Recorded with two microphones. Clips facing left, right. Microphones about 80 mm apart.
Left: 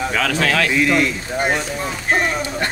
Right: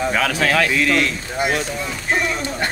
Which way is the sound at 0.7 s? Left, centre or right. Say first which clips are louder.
Left 2 dB; centre.